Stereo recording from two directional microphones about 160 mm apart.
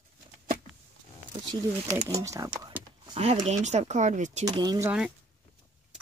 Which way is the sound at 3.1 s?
40° right (ahead or behind).